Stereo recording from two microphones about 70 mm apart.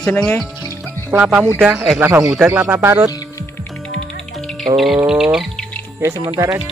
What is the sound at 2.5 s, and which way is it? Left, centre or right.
Speech, right.